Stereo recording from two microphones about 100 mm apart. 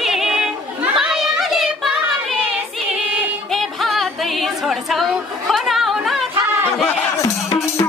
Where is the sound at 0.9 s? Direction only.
5° right (ahead or behind).